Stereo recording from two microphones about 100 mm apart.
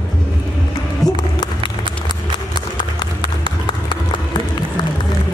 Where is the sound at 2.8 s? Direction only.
50° left (ahead or behind).